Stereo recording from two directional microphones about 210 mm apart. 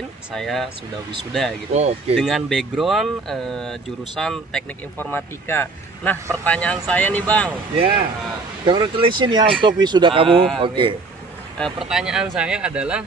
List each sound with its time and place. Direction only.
0.3 s speech: centre (ahead or behind)
1.7 s speech: 30° right (ahead or behind)
2.1 s speech: centre (ahead or behind)
7.7 s speech: 25° right (ahead or behind)
11.5 s speech: centre (ahead or behind)